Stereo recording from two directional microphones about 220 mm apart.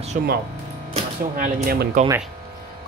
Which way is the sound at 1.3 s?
40° right (ahead or behind).